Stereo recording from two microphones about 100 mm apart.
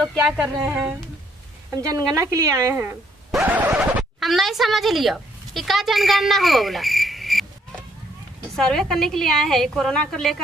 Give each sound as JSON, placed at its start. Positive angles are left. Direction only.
{"t": 0.0, "sound": "a woman's voice", "side_deg": 5}
{"t": 0.7, "sound": "speech", "side_deg": -15}
{"t": 1.8, "sound": "a woman's voice", "side_deg": -35}
{"t": 3.4, "sound": "scratch", "side_deg": -15}
{"t": 3.8, "sound": "speech", "side_deg": 0}
{"t": 8.5, "sound": "a woman's voice", "side_deg": 5}